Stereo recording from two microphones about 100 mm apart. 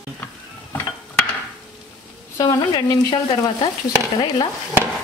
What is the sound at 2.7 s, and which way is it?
Speech, 40° left (ahead or behind).